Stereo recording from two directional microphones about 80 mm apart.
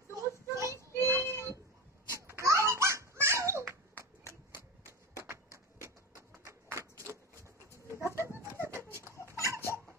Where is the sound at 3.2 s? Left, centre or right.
Right.